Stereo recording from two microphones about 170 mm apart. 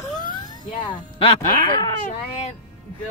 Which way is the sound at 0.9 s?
30° left (ahead or behind).